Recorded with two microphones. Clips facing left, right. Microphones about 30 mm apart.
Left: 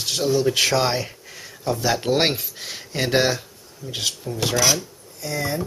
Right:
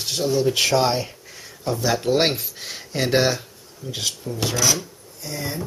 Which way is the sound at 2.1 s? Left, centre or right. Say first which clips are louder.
Right 1 dB; centre.